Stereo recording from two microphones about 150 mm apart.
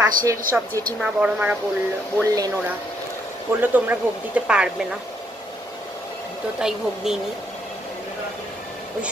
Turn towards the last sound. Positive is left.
turn(degrees=-5)  # may be behind; listen again after turning